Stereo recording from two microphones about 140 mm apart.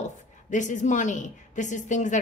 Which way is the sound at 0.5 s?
60° left (ahead or behind).